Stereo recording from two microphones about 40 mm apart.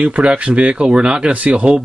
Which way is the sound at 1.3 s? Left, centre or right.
Right.